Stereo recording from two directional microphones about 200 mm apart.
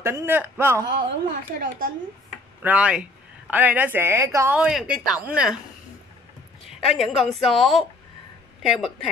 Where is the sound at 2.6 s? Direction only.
5° right (ahead or behind).